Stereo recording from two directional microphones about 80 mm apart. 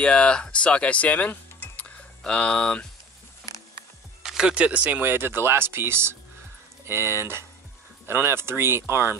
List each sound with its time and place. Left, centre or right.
0.0 s speech: centre
4.2 s speech: centre; by 9.2 s right